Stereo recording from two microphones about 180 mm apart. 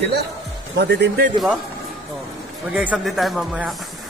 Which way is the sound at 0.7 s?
65° right (ahead or behind).